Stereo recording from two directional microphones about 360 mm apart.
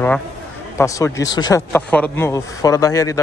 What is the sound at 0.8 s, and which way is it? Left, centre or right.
A man's voice, centre.